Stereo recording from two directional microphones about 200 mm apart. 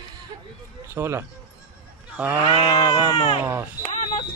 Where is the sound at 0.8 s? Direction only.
10° right (ahead or behind).